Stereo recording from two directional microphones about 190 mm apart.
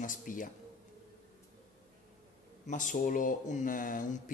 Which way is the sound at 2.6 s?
45° left (ahead or behind).